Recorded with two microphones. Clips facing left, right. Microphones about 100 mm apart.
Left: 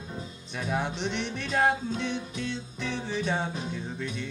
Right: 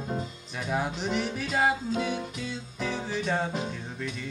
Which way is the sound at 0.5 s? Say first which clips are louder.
Even; centre (ahead or behind).